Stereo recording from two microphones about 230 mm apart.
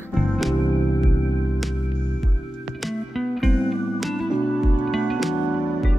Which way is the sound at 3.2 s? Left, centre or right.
Centre.